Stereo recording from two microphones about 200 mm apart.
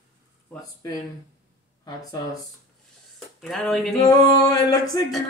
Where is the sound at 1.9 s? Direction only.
20° left (ahead or behind).